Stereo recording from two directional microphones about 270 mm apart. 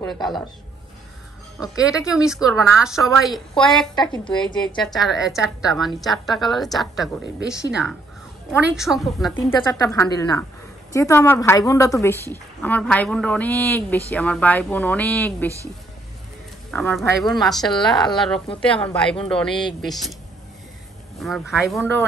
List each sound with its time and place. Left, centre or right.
0.0 s a woman's voice: centre
1.9 s a woman's voice: centre
4.1 s a woman's voice: centre
5.0 s a woman's voice: centre
8.5 s a woman's voice: centre
9.4 s a woman's voice: centre
16.7 s a woman's voice: centre
21.2 s a woman's voice: centre